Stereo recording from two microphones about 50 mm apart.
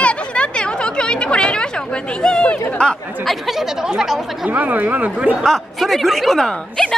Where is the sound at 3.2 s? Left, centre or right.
Centre.